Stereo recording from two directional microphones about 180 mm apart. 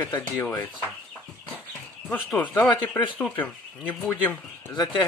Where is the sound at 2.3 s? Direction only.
10° left (ahead or behind).